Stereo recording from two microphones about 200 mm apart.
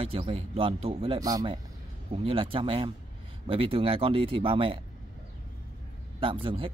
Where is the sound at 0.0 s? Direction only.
30° right (ahead or behind).